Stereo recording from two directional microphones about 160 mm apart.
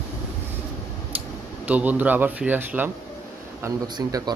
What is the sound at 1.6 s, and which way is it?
Speech, 10° right (ahead or behind).